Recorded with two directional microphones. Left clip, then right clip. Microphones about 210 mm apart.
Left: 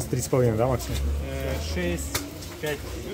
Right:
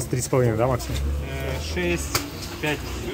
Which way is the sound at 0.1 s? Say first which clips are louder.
Right 1 dB; 45° left (ahead or behind).